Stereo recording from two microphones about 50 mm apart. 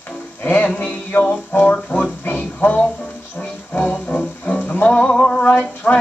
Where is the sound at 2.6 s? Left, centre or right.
Left.